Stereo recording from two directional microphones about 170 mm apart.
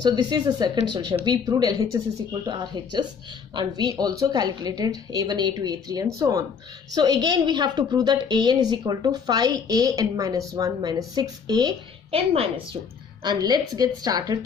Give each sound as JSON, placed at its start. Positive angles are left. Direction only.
{"t": 0.0, "sound": "a woman's voice", "side_deg": -25}